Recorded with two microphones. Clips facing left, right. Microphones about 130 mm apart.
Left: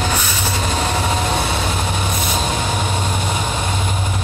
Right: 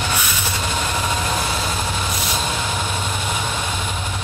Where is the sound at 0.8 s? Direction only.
30° left (ahead or behind).